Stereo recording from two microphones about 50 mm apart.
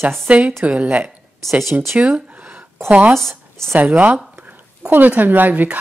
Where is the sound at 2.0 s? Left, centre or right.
Right.